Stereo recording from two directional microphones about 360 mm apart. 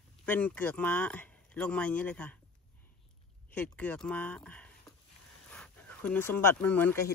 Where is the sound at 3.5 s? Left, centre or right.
Centre.